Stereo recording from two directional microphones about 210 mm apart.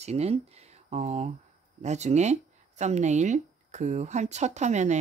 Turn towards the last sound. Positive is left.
turn(degrees=-35)  # may be behind; listen again after turning